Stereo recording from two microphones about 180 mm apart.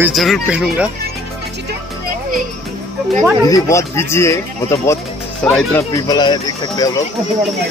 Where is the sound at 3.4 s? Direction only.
20° left (ahead or behind).